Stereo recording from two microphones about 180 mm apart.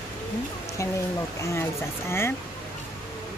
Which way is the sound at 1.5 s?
15° left (ahead or behind).